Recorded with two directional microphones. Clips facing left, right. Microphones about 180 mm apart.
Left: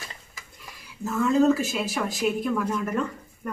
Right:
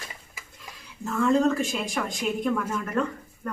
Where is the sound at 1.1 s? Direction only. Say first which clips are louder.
Left 2 dB; 5° left (ahead or behind).